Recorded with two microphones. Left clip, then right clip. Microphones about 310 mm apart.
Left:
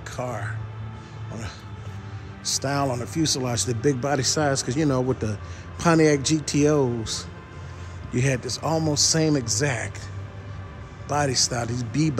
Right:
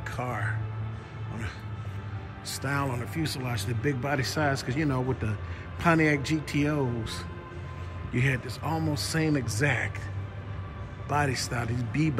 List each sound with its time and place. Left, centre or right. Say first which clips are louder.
0.0 s speech: left 2 dB; centre
2.6 s speech: left 3 dB; centre
11.1 s speech: left 5 dB; centre